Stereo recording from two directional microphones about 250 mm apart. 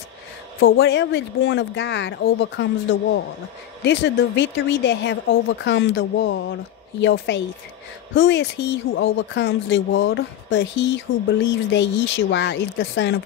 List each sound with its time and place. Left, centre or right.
0.6 s speech: left